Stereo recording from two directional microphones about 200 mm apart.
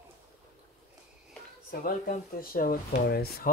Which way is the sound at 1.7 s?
45° left (ahead or behind).